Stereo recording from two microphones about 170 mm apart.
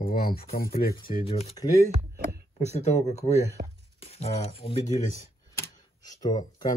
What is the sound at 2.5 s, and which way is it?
Speech, 40° left (ahead or behind).